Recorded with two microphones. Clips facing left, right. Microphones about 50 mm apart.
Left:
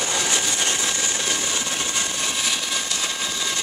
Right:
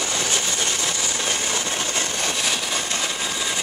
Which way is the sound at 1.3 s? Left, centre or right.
Right.